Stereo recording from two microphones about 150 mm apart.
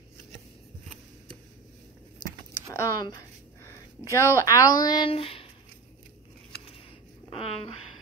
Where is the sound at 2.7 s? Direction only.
25° left (ahead or behind).